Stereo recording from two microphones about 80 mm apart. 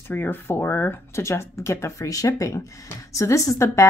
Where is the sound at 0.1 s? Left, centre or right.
Left.